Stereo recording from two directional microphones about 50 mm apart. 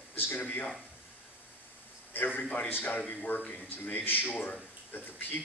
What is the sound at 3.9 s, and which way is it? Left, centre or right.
A man's voice, left.